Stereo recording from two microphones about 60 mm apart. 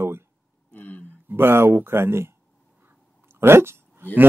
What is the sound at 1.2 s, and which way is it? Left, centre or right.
Speech, right.